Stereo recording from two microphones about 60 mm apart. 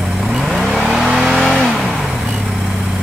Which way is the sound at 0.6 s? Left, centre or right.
Centre.